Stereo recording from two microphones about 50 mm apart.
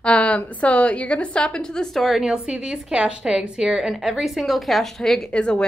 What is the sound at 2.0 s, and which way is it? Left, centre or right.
A woman's voice, centre.